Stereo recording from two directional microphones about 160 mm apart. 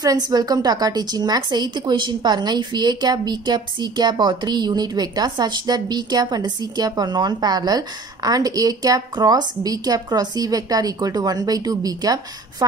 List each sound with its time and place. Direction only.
0.0 s a woman's voice: 25° right (ahead or behind)